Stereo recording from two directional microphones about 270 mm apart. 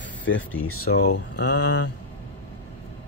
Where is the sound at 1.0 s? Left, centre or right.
Left.